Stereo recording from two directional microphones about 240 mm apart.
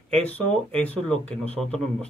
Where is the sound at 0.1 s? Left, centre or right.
Centre.